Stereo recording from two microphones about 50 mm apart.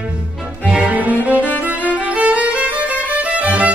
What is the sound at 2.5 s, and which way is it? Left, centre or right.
Music, right.